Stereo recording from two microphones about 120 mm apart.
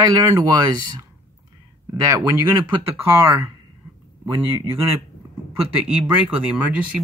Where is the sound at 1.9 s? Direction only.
25° right (ahead or behind); by 7.0 s 10° right (ahead or behind).